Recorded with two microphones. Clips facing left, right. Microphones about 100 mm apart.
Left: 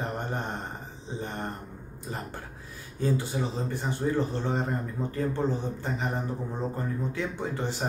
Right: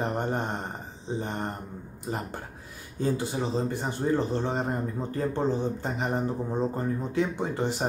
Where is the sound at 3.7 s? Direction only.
20° right (ahead or behind).